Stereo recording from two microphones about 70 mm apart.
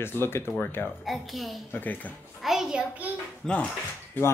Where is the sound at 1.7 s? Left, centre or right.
Left.